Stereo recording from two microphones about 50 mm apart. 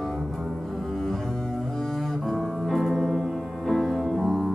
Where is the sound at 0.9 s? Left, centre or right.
Centre.